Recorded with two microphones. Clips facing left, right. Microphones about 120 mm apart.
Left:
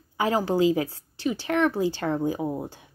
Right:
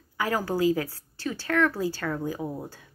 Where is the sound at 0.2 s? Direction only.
20° left (ahead or behind).